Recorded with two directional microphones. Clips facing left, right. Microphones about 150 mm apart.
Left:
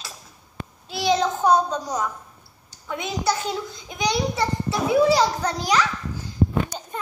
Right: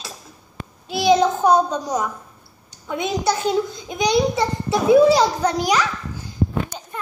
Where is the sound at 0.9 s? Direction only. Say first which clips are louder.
Right 5 dB; 15° right (ahead or behind).